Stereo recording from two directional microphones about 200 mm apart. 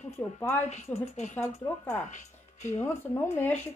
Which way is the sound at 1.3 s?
10° left (ahead or behind).